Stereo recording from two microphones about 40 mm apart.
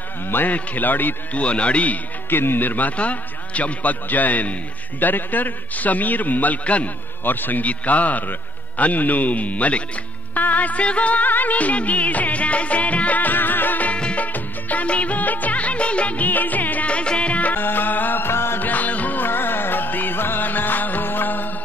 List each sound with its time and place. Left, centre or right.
0.5 s a man's voice: left
1.3 s speech: left
2.2 s speech: left
3.0 s music: left
5.0 s a man's voice: left
7.2 s a man's voice: left
7.6 s music: left
14.1 s music: left
14.9 s music of bollywood: left
16.8 s music: left
17.6 s music: left
18.6 s music: left
19.2 s music: left